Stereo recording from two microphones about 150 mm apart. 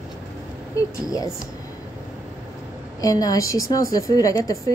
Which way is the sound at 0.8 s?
25° left (ahead or behind).